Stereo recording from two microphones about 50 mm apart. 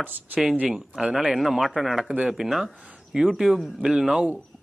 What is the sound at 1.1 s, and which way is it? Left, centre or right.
A man's voice, centre.